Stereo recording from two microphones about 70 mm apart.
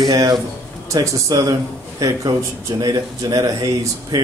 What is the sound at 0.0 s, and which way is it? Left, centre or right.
A man's voice, right.